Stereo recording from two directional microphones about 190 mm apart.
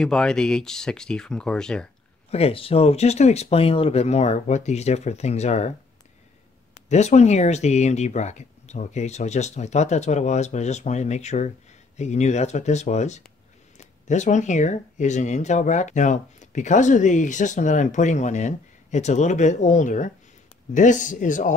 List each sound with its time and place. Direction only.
0.0 s speech: 5° left (ahead or behind)
2.3 s speech: 30° left (ahead or behind)
6.7 s speech: 35° left (ahead or behind)